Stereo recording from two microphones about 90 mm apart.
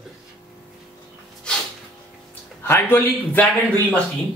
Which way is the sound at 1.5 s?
10° left (ahead or behind).